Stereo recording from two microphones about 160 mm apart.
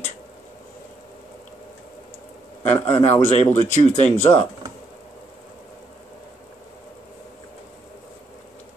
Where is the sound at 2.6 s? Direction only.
45° left (ahead or behind).